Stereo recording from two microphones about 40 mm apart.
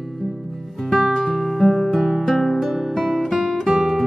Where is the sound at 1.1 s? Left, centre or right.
Centre.